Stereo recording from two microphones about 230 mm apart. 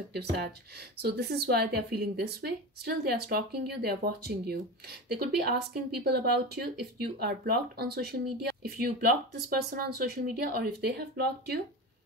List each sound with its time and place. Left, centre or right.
0.1 s speech: right